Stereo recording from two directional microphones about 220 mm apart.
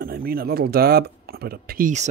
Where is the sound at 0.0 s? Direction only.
45° right (ahead or behind).